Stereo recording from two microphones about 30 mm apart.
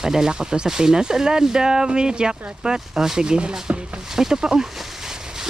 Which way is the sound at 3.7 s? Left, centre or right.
Right.